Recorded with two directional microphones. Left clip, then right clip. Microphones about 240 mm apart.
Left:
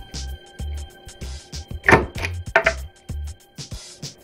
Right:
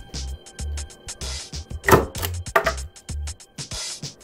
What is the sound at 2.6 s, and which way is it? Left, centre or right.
Music, centre.